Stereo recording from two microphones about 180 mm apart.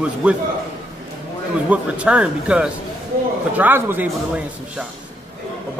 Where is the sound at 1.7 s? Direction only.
5° right (ahead or behind).